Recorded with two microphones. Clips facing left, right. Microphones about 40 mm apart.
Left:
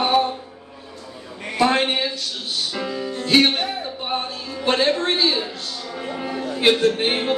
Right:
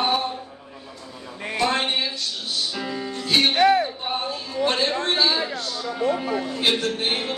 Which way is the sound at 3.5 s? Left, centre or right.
Right.